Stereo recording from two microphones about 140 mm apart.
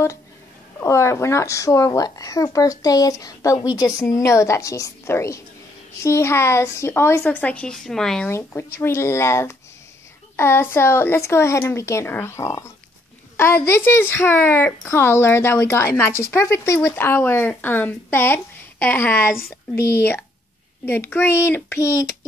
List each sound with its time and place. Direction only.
0.7 s speech: 20° left (ahead or behind); by 8.3 s 5° left (ahead or behind)
8.3 s speech: 20° left (ahead or behind)
19.2 s speech: 90° left
19.9 s speech: 15° left (ahead or behind)